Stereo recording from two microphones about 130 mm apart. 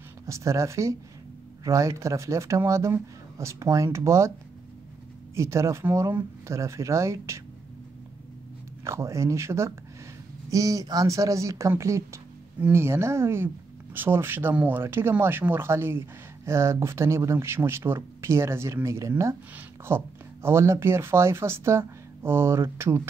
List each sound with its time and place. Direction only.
0.3 s speech: 20° right (ahead or behind)
5.3 s speech: 20° right (ahead or behind)
8.8 s speech: 20° right (ahead or behind)